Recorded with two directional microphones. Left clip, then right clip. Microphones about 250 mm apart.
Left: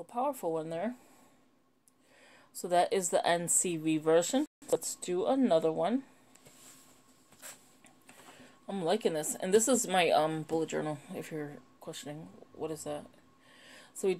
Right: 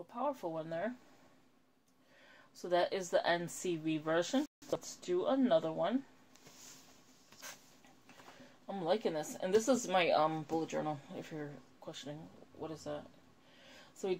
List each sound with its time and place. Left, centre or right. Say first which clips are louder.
0.1 s a woman's voice: left 6 dB; left
2.5 s a woman's voice: left 5 dB; left
8.6 s speech: left 4 dB; left